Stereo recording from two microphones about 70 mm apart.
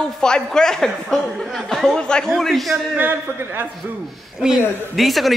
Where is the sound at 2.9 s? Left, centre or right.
Right.